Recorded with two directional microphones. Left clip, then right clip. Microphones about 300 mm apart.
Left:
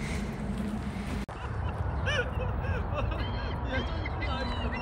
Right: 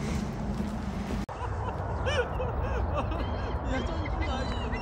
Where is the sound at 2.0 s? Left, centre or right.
Right.